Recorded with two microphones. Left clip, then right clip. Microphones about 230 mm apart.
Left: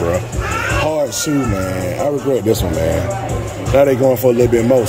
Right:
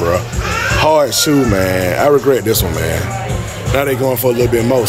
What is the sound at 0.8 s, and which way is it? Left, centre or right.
Speech, centre.